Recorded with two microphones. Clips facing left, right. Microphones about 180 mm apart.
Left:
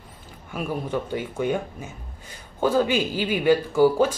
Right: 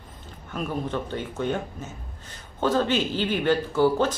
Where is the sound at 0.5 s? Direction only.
10° left (ahead or behind).